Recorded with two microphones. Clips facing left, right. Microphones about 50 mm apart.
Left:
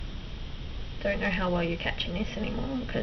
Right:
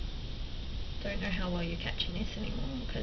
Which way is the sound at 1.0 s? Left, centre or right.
Left.